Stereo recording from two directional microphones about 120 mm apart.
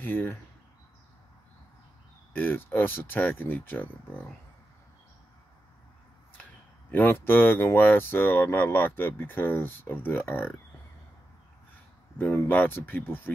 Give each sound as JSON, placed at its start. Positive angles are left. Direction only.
{"t": 0.0, "sound": "speech", "side_deg": 15}
{"t": 2.3, "sound": "speech", "side_deg": 15}
{"t": 6.9, "sound": "speech", "side_deg": 15}
{"t": 12.2, "sound": "speech", "side_deg": 15}